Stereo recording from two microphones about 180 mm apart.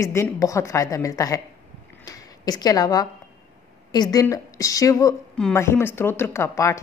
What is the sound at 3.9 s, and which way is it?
A woman's voice, 20° left (ahead or behind).